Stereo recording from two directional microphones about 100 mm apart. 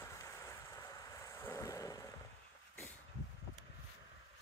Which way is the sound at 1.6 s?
35° left (ahead or behind).